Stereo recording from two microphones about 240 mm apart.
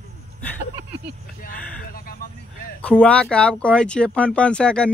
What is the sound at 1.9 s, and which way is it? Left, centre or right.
Speech, left.